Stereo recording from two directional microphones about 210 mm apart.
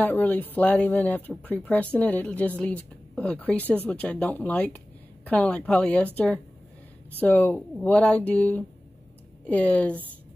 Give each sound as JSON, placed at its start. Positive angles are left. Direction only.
{"t": 0.0, "sound": "a woman's voice", "side_deg": 10}